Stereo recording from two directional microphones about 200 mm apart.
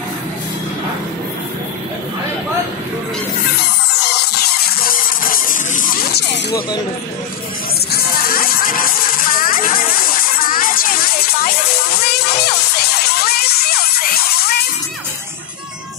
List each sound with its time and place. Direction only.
4.0 s music: 55° left (ahead or behind)
6.2 s snake: 60° left (ahead or behind)
7.9 s music: 50° left (ahead or behind)